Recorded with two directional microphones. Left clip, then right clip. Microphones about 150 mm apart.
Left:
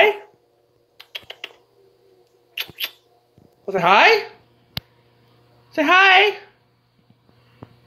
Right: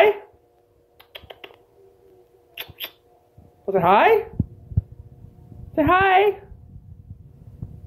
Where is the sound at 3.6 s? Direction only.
5° left (ahead or behind).